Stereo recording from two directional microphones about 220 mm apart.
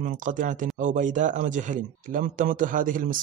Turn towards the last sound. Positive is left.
turn(degrees=-40)  # may be behind; listen again after turning